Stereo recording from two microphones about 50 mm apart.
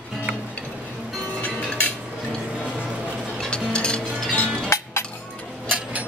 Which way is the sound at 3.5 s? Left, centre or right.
Centre.